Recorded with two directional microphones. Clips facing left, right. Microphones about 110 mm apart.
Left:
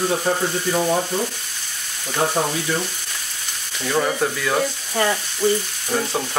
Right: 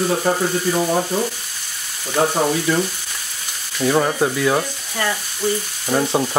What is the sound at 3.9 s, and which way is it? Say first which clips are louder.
Sanding: right 3 dB; 20° right (ahead or behind).